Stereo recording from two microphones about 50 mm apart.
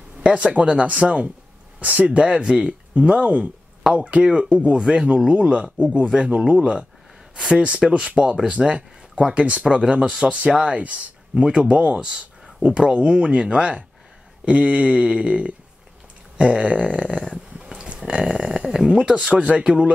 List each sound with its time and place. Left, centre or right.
0.2 s speech: right
17.6 s a sound: centre
19.0 s speech: right